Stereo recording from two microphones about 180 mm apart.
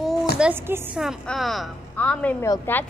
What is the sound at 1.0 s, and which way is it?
A woman's voice, centre (ahead or behind).